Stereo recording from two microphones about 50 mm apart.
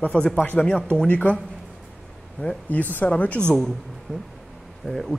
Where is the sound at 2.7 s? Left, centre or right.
Left.